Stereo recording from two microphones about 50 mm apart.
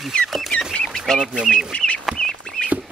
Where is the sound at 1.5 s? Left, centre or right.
Left.